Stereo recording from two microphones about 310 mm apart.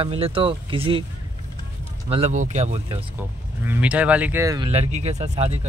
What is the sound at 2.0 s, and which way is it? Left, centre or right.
Speech, centre.